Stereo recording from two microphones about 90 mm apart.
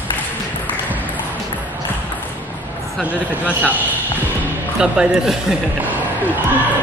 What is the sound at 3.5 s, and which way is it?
Speech, 20° right (ahead or behind).